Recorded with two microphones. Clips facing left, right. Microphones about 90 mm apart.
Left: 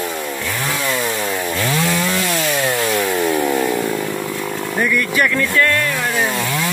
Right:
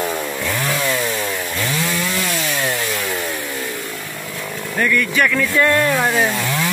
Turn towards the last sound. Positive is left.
turn(degrees=-30)  # may be behind; listen again after turning